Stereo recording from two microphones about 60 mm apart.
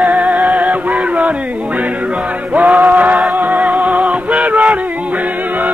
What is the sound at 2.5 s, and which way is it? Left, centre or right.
Music, right.